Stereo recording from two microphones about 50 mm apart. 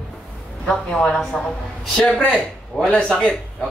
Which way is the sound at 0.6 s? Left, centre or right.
Centre.